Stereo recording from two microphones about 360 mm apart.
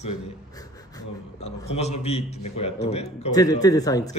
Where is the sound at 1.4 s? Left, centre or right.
Centre.